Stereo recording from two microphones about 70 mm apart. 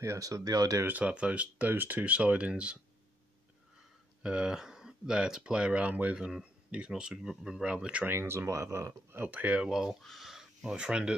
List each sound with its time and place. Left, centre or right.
0.0 s speech: right
0.8 s speech: right
4.2 s speech: centre
7.7 s speech: centre
8.1 s speech: right
9.1 s speech: right
9.6 s speech: centre
10.6 s speech: centre